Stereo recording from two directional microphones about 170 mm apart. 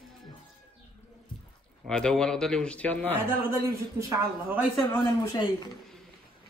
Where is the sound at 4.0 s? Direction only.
15° right (ahead or behind).